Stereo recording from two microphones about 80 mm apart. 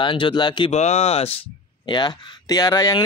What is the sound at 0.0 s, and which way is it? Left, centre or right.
Speech, left.